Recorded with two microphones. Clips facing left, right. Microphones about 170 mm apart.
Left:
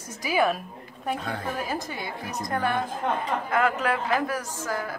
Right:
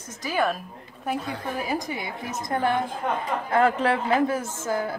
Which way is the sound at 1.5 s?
10° right (ahead or behind).